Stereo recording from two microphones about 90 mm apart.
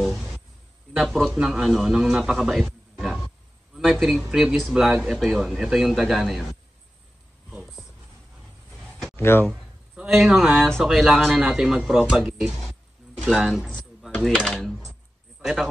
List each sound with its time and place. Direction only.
0.0 s a sound: centre (ahead or behind)
0.9 s a man's voice: 5° left (ahead or behind)
8.4 s a sound: centre (ahead or behind)
9.1 s speech: 25° left (ahead or behind)
9.9 s speech: 5° right (ahead or behind)
14.3 s speech: 5° left (ahead or behind)